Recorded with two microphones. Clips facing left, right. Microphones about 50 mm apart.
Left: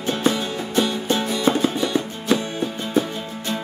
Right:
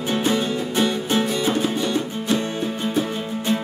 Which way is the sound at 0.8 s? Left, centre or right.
Centre.